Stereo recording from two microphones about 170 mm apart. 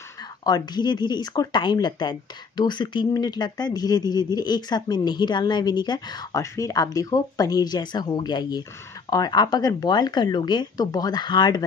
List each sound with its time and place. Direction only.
0.4 s speech: 20° left (ahead or behind)